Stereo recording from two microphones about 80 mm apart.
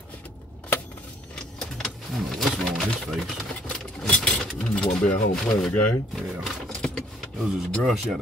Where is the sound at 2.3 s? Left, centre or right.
Centre.